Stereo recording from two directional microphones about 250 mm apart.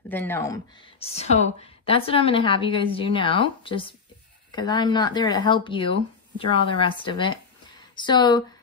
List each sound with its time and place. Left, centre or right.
0.1 s speech: centre
0.9 s a woman's voice: left